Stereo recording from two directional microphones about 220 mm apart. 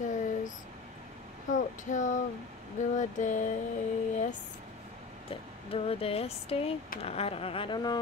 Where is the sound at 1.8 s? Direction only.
35° left (ahead or behind).